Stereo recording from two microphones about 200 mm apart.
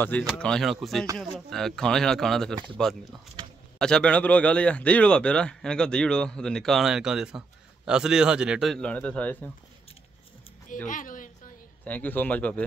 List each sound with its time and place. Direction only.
0.4 s a man's voice: 5° left (ahead or behind)
10.9 s a sound: 40° left (ahead or behind)
11.8 s speech: 10° left (ahead or behind)